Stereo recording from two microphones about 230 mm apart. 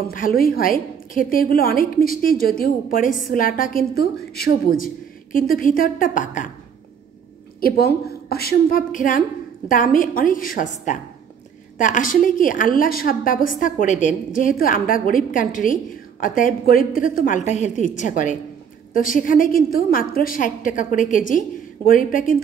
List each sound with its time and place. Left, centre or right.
0.1 s a woman's voice: left
7.6 s a woman's voice: left